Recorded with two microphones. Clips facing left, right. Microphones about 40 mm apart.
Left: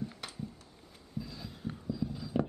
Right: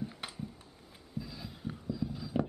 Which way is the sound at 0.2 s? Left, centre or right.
Centre.